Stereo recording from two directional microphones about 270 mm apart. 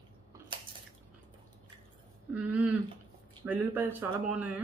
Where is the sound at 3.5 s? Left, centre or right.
Centre.